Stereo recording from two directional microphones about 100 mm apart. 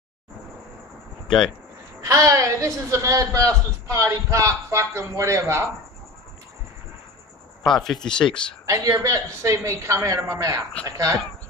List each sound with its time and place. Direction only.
2.0 s a woman's voice: 35° right (ahead or behind)
7.6 s speech: centre (ahead or behind)
8.6 s a woman's voice: 35° right (ahead or behind)